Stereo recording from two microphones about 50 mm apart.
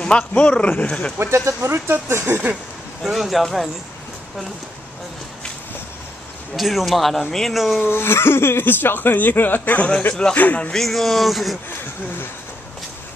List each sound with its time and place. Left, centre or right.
0.3 s speech: left
1.2 s speech: right
3.0 s speech: centre
6.5 s speech: centre
7.8 s speech: left
10.7 s speech: centre